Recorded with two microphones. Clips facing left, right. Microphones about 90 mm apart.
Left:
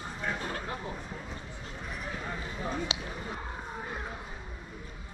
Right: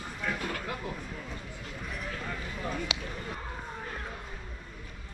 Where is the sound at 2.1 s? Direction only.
20° left (ahead or behind).